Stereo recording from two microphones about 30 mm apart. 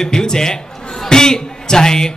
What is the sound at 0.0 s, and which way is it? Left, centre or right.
A man's voice, left.